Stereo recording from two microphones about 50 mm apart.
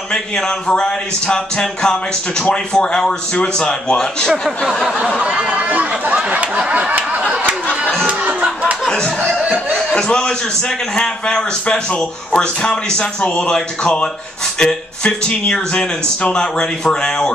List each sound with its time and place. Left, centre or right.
0.1 s speech: centre
4.3 s speech: centre
5.4 s speech: right
6.9 s snicker: right
8.1 s a sound: right
8.8 s a sound: centre
9.8 s a man's voice: centre